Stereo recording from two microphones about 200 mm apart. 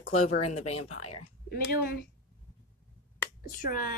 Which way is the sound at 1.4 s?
55° left (ahead or behind).